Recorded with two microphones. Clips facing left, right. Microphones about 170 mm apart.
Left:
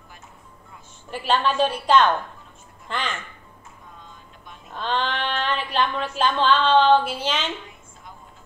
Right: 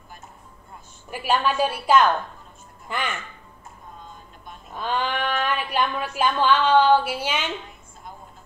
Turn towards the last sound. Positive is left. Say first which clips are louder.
# even
turn(degrees=-10)  # may be behind; listen again after turning